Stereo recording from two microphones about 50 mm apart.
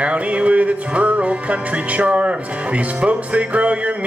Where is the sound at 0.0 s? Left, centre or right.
Right.